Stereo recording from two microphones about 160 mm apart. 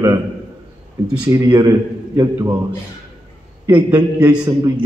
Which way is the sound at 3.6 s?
25° right (ahead or behind).